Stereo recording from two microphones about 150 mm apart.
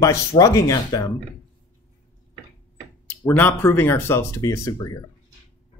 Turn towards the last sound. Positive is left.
turn(degrees=20)  # may be behind; listen again after turning